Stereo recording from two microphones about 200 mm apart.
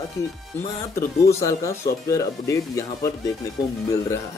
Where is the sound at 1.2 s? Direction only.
15° left (ahead or behind).